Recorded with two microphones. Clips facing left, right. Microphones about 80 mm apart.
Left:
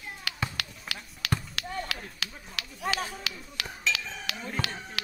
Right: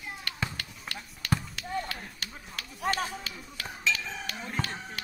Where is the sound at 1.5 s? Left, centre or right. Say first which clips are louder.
Right 1 dB; left.